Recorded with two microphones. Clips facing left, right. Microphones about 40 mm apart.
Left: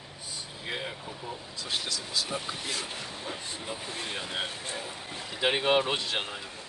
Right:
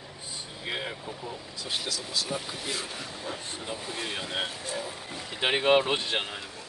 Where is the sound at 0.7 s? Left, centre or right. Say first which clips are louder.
Right 2 dB; centre.